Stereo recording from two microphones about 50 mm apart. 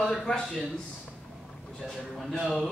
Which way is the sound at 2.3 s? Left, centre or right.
Centre.